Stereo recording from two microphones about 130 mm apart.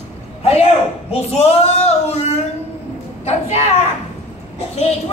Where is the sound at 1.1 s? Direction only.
50° left (ahead or behind).